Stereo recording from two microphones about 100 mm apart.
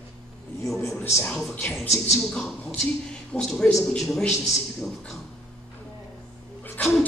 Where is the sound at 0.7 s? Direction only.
Centre (ahead or behind).